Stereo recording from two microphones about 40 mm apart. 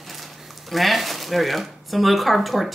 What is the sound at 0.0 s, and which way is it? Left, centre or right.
Speech, centre.